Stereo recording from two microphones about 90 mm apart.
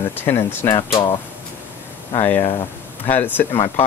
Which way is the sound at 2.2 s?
25° left (ahead or behind).